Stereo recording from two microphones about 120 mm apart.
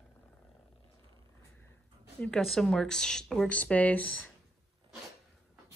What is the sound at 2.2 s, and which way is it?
Speech, 5° left (ahead or behind).